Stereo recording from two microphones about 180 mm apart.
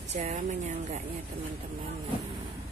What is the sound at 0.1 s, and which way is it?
Speech, 40° right (ahead or behind).